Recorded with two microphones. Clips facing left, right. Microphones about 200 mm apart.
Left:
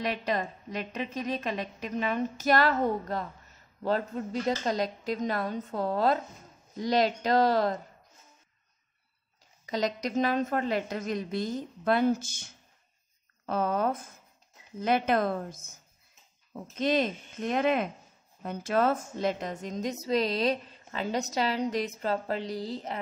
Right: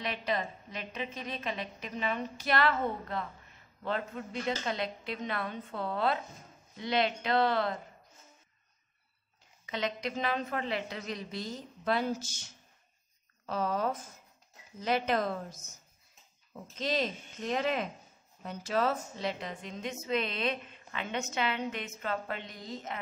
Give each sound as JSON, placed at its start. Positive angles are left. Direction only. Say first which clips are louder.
{"t": 0.0, "sound": "a woman's voice", "louder": "left 4 dB", "side_deg": 45}
{"t": 9.7, "sound": "a woman's voice", "louder": "left 5 dB", "side_deg": 40}
{"t": 13.5, "sound": "a woman's voice", "louder": "left 4 dB", "side_deg": 55}
{"t": 16.7, "sound": "a woman's voice", "louder": "left 6 dB", "side_deg": 55}